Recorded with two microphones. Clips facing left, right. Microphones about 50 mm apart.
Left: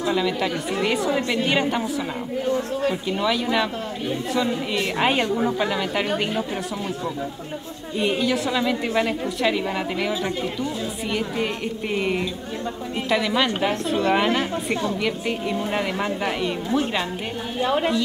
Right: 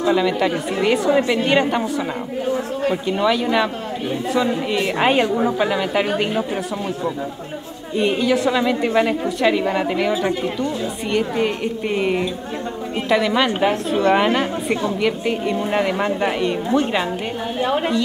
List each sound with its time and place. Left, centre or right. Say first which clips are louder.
0.0 s a woman's voice: right 5 dB; centre
2.5 s a man's voice: right 3 dB; centre
3.1 s a woman's voice: right 7 dB; centre
7.9 s a woman's voice: right 4 dB; centre
17.6 s a man's voice: right 1 dB; centre